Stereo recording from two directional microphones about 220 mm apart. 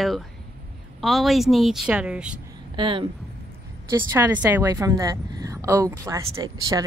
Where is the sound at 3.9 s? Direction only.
10° right (ahead or behind).